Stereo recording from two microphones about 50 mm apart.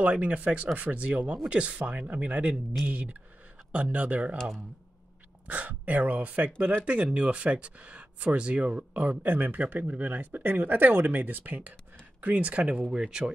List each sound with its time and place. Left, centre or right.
0.0 s speech: right
5.5 s speech: right; by 13.3 s centre